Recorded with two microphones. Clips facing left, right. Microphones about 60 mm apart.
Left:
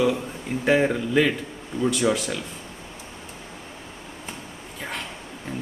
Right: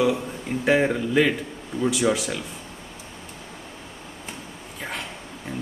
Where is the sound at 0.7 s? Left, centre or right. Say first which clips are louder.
Even; centre.